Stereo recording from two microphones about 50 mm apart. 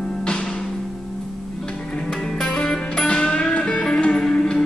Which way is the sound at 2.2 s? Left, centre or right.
Centre.